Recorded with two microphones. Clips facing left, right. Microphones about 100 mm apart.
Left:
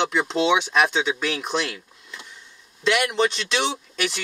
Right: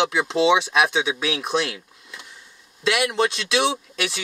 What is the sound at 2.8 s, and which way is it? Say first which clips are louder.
Speech: even; 5° right (ahead or behind).